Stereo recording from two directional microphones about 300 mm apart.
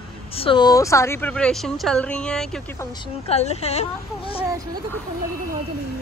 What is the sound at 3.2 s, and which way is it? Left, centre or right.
Speech, left.